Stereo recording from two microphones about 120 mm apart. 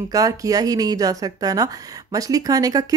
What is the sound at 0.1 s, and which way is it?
Speech, 30° right (ahead or behind).